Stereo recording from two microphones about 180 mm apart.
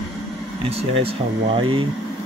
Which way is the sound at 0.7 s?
30° right (ahead or behind).